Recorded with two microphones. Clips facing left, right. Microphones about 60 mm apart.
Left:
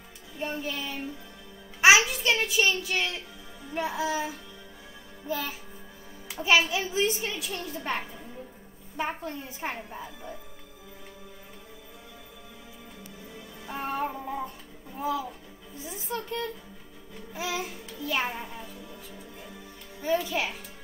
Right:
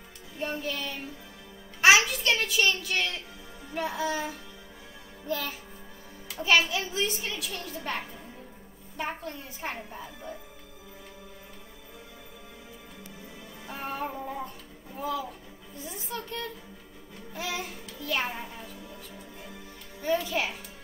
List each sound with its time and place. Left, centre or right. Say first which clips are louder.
0.4 s music: even; centre
2.0 s a child's voice: left 1 dB; centre
3.6 s music: left 1 dB; centre
5.2 s a child's voice: even; centre
7.2 s a woman's voice: left 1 dB; centre
8.9 s a child's voice: left 2 dB; centre
9.8 s music: left 1 dB; centre
13.7 s music: left 3 dB; centre
15.0 s a child's voice: left 2 dB; centre
15.8 s music: left 3 dB; centre